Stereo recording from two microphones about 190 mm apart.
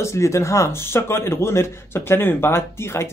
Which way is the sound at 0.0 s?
15° left (ahead or behind).